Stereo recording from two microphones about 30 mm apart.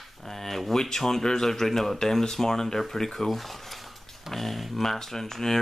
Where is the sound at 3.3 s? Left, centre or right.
Centre.